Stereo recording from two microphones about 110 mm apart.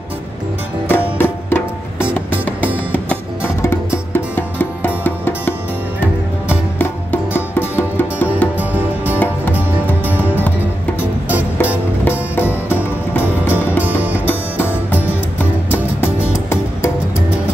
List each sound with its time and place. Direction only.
0.8 s music: 20° left (ahead or behind)
6.5 s music: 20° left (ahead or behind)
8.5 s music: 15° right (ahead or behind)
12.0 s music: 20° left (ahead or behind)